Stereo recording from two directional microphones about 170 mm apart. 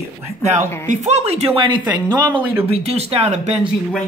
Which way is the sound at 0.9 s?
40° right (ahead or behind).